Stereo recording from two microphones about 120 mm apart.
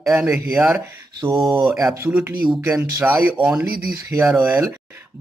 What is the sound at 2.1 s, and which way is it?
Speech, 15° right (ahead or behind).